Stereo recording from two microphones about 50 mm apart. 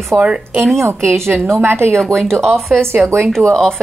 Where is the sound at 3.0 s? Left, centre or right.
Right.